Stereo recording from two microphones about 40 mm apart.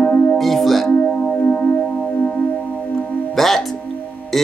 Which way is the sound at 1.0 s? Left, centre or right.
Left.